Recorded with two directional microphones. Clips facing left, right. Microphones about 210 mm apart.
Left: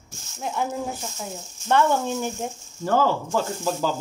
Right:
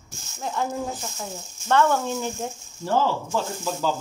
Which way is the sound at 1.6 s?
15° left (ahead or behind).